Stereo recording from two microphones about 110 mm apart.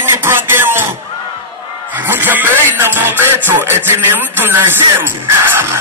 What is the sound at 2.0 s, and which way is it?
Music, 20° right (ahead or behind).